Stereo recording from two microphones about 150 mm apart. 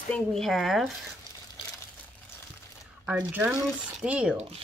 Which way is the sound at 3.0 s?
10° right (ahead or behind).